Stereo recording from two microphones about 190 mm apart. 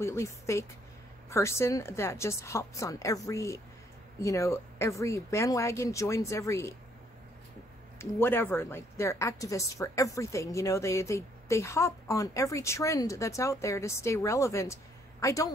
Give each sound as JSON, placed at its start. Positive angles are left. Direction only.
{"t": 0.0, "sound": "a woman's voice", "side_deg": 15}
{"t": 8.0, "sound": "a woman's voice", "side_deg": 10}